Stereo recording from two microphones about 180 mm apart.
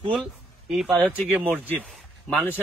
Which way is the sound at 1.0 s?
10° left (ahead or behind).